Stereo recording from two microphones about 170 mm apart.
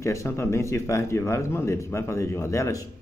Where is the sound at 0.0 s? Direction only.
15° left (ahead or behind).